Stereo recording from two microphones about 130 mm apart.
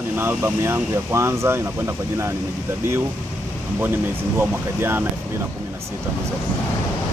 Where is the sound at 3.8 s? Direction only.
15° right (ahead or behind).